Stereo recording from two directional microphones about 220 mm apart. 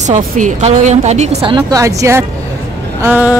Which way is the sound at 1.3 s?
20° right (ahead or behind).